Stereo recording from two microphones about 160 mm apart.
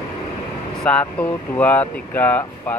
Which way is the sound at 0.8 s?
5° left (ahead or behind).